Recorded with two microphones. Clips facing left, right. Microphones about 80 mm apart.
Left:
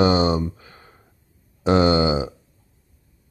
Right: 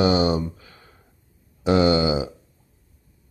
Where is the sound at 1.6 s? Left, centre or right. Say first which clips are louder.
Left 1 dB; left.